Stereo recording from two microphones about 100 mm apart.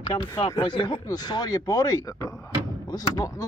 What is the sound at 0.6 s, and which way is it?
Speech, 55° left (ahead or behind).